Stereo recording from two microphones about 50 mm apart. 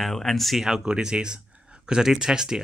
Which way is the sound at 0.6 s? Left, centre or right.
Centre.